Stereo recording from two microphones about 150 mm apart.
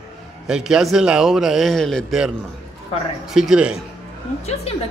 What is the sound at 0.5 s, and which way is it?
A man's voice, 5° right (ahead or behind).